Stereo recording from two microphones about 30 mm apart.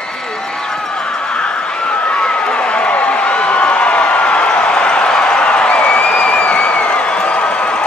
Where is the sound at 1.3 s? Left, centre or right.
Left.